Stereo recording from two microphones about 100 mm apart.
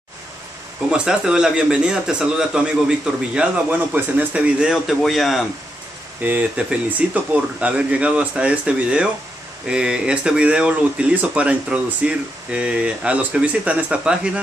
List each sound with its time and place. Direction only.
0.8 s speech: 10° right (ahead or behind)
6.2 s speech: 15° right (ahead or behind)